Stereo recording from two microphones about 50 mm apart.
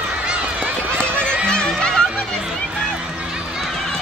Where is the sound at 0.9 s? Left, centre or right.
Centre.